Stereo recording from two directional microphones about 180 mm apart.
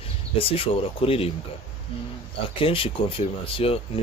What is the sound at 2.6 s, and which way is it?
Speech, 30° left (ahead or behind).